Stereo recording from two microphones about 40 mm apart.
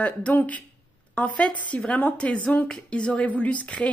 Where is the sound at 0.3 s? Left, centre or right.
Left.